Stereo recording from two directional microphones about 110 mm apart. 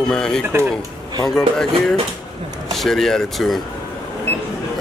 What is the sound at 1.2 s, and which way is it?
Speech, 5° left (ahead or behind).